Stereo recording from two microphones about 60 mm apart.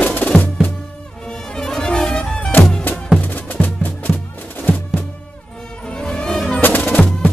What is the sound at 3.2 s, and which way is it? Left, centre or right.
Music, left.